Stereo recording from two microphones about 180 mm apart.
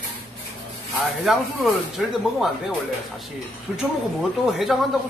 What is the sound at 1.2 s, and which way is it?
Speech, centre (ahead or behind).